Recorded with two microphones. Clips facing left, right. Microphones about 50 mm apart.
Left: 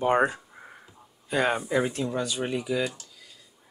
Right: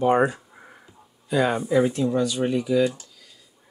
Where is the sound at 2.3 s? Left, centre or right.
Centre.